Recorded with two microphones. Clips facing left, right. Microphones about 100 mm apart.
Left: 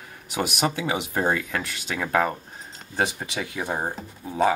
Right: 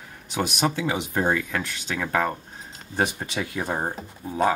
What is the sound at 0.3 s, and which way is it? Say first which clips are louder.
Speech: right 1 dB; 5° left (ahead or behind).